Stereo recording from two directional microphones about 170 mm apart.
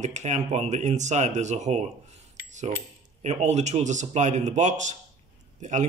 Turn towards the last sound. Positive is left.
turn(degrees=-45)  # may be behind; listen again after turning